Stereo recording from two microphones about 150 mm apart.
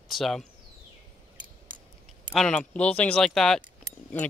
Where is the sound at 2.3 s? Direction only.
5° left (ahead or behind).